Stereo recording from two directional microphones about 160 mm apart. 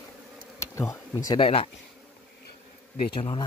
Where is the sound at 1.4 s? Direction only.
40° left (ahead or behind).